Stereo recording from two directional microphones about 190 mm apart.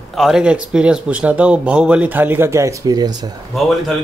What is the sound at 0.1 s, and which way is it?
Speech, centre (ahead or behind).